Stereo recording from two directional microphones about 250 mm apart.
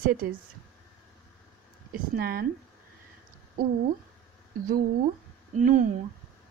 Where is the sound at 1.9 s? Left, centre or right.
Right.